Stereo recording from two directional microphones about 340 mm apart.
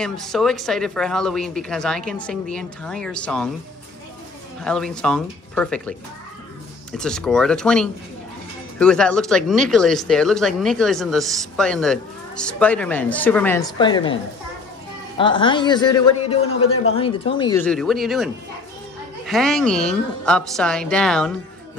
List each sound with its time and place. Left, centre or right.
0.0 s speech: centre
4.6 s speech: centre
15.1 s a man's voice: centre